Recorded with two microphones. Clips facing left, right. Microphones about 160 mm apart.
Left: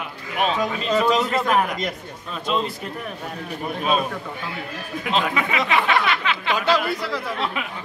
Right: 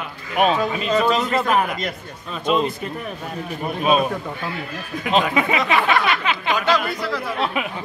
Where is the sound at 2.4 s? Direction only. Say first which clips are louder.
Right 4 dB; 20° right (ahead or behind).